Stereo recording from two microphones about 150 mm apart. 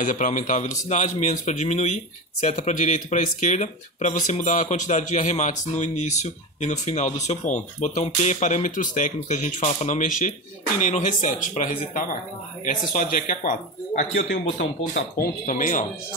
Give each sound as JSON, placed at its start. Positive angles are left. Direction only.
{"t": 0.0, "sound": "speech", "side_deg": 60}
{"t": 15.4, "sound": "speech", "side_deg": 60}